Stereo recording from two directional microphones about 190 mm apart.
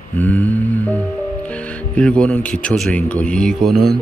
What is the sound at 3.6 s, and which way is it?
Speech, 55° right (ahead or behind).